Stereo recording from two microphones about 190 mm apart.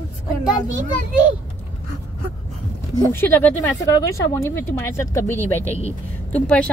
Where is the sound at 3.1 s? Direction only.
10° left (ahead or behind).